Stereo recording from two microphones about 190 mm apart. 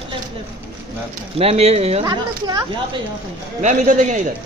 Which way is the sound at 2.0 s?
20° right (ahead or behind).